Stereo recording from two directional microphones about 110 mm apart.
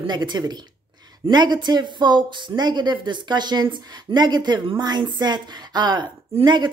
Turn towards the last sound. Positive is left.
turn(degrees=-45)  # may be behind; listen again after turning